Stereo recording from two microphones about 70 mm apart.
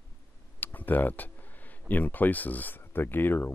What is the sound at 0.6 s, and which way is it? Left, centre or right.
Speech, left.